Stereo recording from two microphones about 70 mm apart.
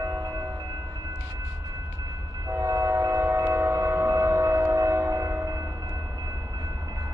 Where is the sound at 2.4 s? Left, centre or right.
Right.